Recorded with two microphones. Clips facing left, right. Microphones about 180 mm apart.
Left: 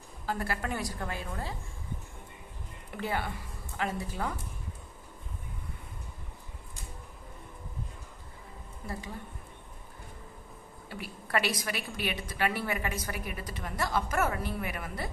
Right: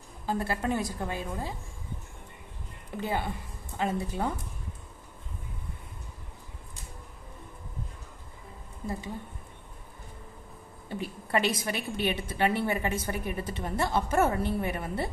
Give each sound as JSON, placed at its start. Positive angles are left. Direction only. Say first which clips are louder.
{"t": 0.3, "sound": "a woman's voice", "louder": "right 4 dB", "side_deg": -25}
{"t": 3.0, "sound": "a woman's voice", "louder": "right 2 dB", "side_deg": -20}
{"t": 10.9, "sound": "a woman's voice", "louder": "right 3 dB", "side_deg": -20}